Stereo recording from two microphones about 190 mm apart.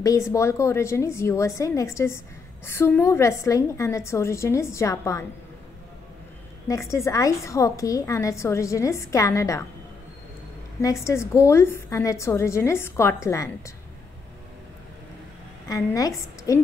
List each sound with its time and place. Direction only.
0.0 s a woman's voice: 15° left (ahead or behind)
6.7 s a woman's voice: 15° left (ahead or behind)
10.8 s a woman's voice: 15° left (ahead or behind)
15.7 s a woman's voice: 15° left (ahead or behind)